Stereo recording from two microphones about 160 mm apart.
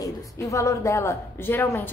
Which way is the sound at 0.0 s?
20° left (ahead or behind).